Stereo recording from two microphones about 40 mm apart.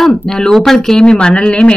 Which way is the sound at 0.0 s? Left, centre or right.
Centre.